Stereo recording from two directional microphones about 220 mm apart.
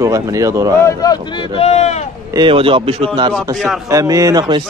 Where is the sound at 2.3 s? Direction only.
20° right (ahead or behind).